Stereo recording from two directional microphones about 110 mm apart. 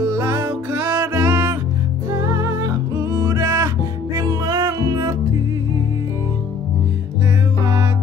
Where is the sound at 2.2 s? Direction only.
30° right (ahead or behind).